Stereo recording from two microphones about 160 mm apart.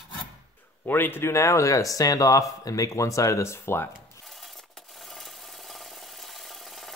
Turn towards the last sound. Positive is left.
turn(degrees=0)  # may be behind; listen again after turning